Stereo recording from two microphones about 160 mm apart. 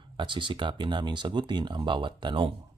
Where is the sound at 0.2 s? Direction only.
30° right (ahead or behind).